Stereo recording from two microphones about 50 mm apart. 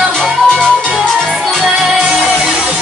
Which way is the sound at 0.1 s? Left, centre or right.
Centre.